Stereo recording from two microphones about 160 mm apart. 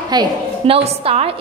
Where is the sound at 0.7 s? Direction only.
40° right (ahead or behind).